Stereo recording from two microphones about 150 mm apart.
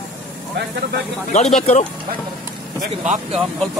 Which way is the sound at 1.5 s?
50° left (ahead or behind).